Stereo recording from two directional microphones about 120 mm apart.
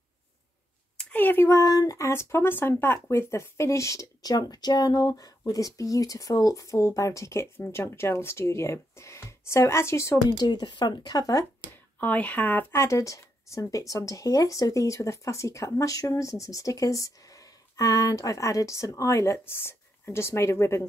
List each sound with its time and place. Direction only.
0.9 s speech: 15° left (ahead or behind)
10.3 s speech: 35° left (ahead or behind)
12.0 s speech: 15° left (ahead or behind)